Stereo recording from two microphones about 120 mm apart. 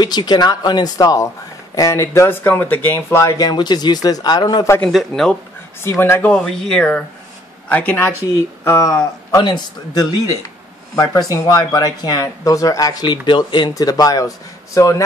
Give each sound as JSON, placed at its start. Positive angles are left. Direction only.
{"t": 0.0, "sound": "speech", "side_deg": 35}
{"t": 3.4, "sound": "speech", "side_deg": 35}
{"t": 4.8, "sound": "speech", "side_deg": 5}
{"t": 5.9, "sound": "speech", "side_deg": 20}
{"t": 6.3, "sound": "speech", "side_deg": 5}